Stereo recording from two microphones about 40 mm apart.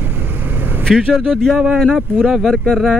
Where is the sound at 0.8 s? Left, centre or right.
Centre.